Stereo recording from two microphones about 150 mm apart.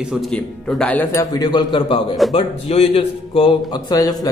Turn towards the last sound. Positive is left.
turn(degrees=25)  # may be behind; listen again after turning